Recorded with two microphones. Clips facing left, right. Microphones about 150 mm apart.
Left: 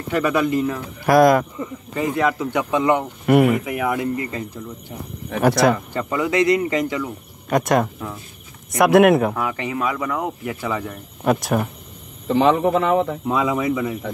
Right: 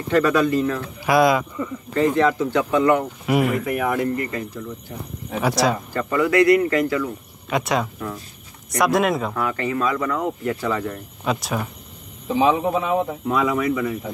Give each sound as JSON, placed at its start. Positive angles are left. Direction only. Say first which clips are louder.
{"t": 0.1, "sound": "speech", "louder": "right 2 dB", "side_deg": 10}
{"t": 1.0, "sound": "speech", "louder": "left 3 dB", "side_deg": 45}
{"t": 2.0, "sound": "speech", "louder": "right 3 dB", "side_deg": 10}
{"t": 3.3, "sound": "speech", "louder": "left 5 dB", "side_deg": 55}
{"t": 3.6, "sound": "speech", "louder": "right 1 dB", "side_deg": 15}
{"t": 5.3, "sound": "speech", "louder": "left 4 dB", "side_deg": 55}
{"t": 5.9, "sound": "speech", "louder": "right 2 dB", "side_deg": 20}
{"t": 7.4, "sound": "speech", "louder": "left 4 dB", "side_deg": 50}
{"t": 8.7, "sound": "speech", "louder": "left 6 dB", "side_deg": 60}
{"t": 9.3, "sound": "speech", "louder": "right 1 dB", "side_deg": 15}
{"t": 11.2, "sound": "speech", "louder": "left 5 dB", "side_deg": 55}
{"t": 12.3, "sound": "speech", "louder": "left 2 dB", "side_deg": 65}
{"t": 13.3, "sound": "speech", "louder": "right 1 dB", "side_deg": 20}